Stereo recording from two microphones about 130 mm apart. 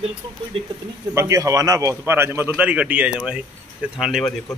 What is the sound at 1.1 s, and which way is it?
A man's voice, 25° right (ahead or behind).